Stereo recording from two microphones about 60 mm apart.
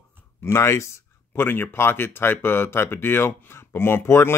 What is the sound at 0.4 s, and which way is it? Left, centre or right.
Speech, left.